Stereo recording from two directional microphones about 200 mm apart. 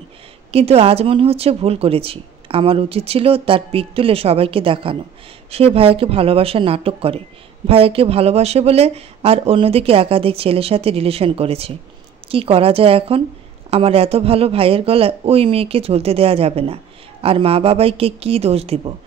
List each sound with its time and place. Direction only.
0.5 s speech: 30° right (ahead or behind)